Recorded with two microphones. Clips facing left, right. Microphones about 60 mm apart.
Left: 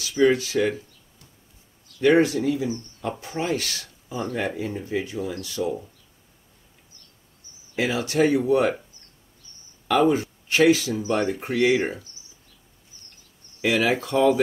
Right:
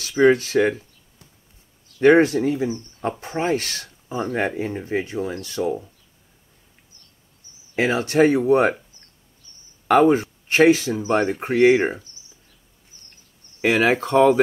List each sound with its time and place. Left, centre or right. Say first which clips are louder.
0.0 s speech: right 3 dB; right
2.0 s speech: right 4 dB; right
7.7 s speech: right 4 dB; right
9.8 s speech: right 4 dB; right
13.6 s speech: right 4 dB; right